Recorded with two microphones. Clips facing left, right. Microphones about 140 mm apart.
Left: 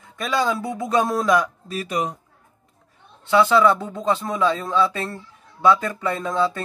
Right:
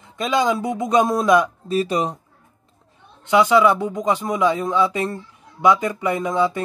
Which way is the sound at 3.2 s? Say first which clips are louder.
Right 1 dB; 15° right (ahead or behind).